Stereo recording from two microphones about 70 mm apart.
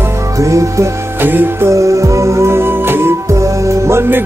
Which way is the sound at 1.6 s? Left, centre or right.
Right.